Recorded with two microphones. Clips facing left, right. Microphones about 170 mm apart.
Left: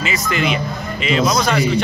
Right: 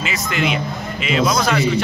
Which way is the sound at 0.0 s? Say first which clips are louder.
Left 1 dB; centre (ahead or behind).